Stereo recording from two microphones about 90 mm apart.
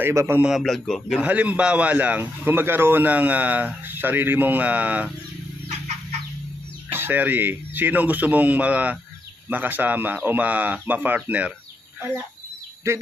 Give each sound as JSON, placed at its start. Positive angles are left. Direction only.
{"t": 0.0, "sound": "speech", "side_deg": -25}
{"t": 0.4, "sound": "a man's voice", "side_deg": 0}
{"t": 1.1, "sound": "a man's voice", "side_deg": -15}
{"t": 6.9, "sound": "a man's voice", "side_deg": -25}
{"t": 12.9, "sound": "speech", "side_deg": -30}